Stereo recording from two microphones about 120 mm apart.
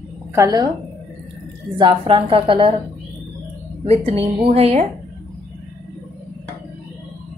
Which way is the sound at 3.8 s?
55° right (ahead or behind).